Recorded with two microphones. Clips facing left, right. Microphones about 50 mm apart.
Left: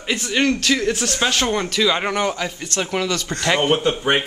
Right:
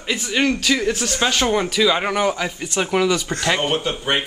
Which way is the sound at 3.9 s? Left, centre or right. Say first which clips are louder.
Left 3 dB; centre.